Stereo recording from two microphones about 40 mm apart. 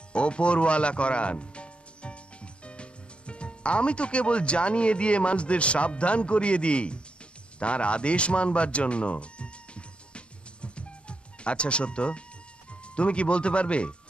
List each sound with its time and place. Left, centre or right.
0.1 s speech: left
7.5 s music: left
12.8 s speech: left